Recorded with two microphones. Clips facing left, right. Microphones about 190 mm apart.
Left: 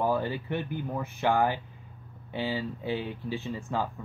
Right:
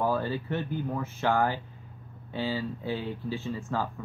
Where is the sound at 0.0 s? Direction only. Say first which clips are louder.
Even; 15° left (ahead or behind).